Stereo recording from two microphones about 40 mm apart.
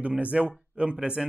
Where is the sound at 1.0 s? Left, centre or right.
Centre.